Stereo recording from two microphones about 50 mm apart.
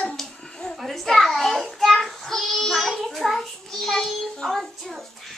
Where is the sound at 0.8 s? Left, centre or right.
Centre.